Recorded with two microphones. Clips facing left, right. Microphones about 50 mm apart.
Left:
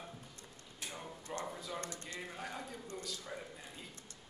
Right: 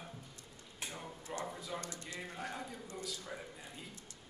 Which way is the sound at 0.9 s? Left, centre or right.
Centre.